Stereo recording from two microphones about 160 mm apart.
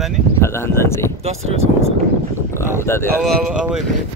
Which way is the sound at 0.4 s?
15° left (ahead or behind).